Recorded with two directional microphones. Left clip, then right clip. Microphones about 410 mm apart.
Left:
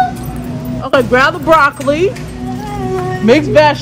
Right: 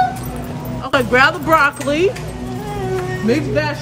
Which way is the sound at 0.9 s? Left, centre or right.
Centre.